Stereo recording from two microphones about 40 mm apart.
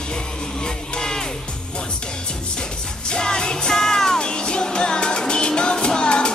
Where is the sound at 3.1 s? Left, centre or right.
Centre.